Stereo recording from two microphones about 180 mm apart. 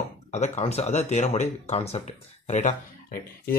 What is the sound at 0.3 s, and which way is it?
Speech, 35° left (ahead or behind).